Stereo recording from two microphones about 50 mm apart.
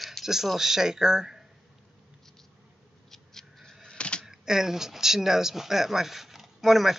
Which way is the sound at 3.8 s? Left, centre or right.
Left.